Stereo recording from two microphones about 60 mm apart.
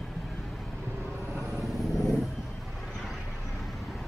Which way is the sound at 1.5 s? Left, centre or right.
Centre.